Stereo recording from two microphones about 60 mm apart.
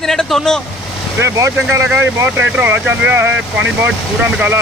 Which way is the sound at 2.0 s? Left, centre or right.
Right.